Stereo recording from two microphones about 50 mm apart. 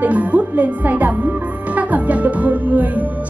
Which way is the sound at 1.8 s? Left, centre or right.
Right.